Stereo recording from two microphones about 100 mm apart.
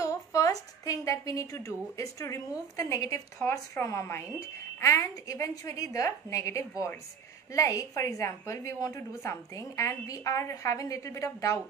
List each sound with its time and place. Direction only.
0.0 s a woman's voice: 35° left (ahead or behind)